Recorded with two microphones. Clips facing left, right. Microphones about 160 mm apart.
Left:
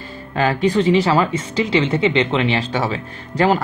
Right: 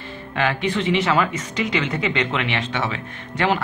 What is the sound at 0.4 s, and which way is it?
Speech, 35° left (ahead or behind).